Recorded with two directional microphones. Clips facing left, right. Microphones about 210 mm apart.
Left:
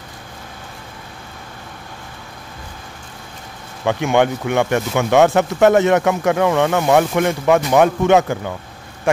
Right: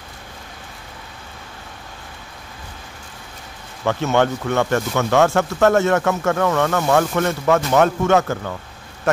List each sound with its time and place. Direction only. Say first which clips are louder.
3.8 s speech: left 2 dB; 15° left (ahead or behind)